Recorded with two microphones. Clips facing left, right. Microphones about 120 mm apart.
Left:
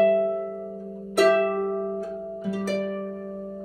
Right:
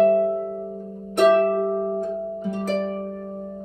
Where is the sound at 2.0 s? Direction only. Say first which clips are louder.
Right 5 dB; 5° left (ahead or behind).